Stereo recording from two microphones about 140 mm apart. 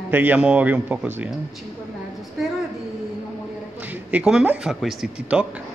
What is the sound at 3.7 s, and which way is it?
Speech, 10° right (ahead or behind).